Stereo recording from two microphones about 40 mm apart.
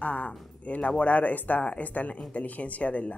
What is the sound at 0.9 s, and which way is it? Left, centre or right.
Speech, left.